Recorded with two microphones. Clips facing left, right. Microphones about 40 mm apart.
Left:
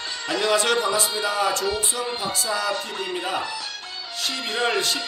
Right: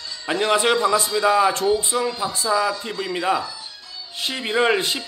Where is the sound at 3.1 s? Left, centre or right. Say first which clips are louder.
Right 7 dB; right.